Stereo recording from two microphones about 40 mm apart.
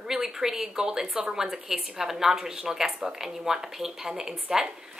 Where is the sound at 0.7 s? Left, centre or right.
Centre.